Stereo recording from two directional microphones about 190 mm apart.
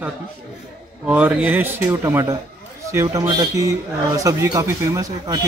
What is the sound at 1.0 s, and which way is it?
Speech, 10° right (ahead or behind).